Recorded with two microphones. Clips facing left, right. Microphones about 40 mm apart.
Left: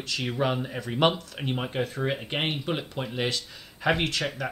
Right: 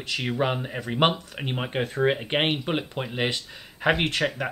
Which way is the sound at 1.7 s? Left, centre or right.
Right.